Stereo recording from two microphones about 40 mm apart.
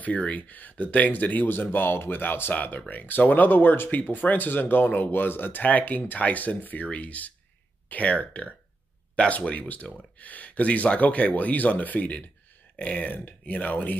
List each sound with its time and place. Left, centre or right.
0.0 s speech: left
1.5 s speech: left
2.5 s speech: left
3.9 s speech: left
5.6 s speech: left